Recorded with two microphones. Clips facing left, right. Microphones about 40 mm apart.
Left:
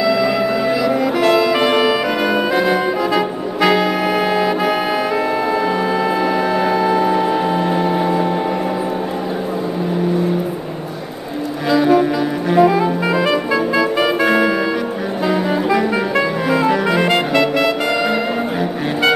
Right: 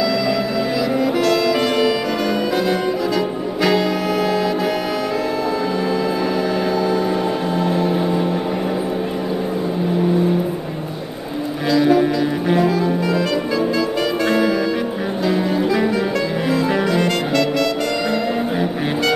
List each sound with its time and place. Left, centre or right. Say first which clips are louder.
0.0 s music: left 3 dB; centre
2.5 s brass instrument: left 3 dB; centre
6.6 s music: left 3 dB; left
11.8 s music: left 1 dB; centre
12.6 s music: left 3 dB; left